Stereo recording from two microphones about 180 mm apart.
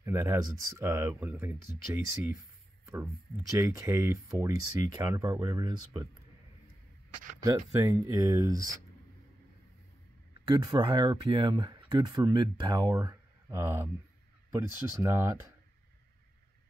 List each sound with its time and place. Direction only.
0.0 s speech: 15° right (ahead or behind)
3.5 s speech: 15° right (ahead or behind)
7.4 s speech: 15° right (ahead or behind)
10.5 s speech: 25° right (ahead or behind)